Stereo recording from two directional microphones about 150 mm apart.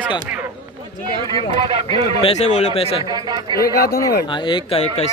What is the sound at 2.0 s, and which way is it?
Speech, 40° right (ahead or behind).